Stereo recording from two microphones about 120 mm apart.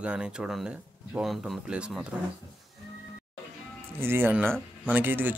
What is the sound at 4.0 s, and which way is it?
Speech, 20° right (ahead or behind).